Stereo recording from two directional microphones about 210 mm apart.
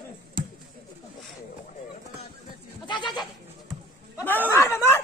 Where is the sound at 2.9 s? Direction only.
20° left (ahead or behind).